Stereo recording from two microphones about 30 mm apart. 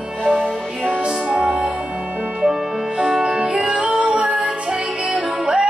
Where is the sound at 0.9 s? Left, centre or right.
Right.